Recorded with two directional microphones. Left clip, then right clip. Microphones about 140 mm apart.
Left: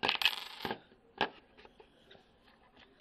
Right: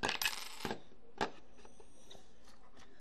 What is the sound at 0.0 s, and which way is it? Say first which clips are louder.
Coin: left 5 dB; 5° left (ahead or behind).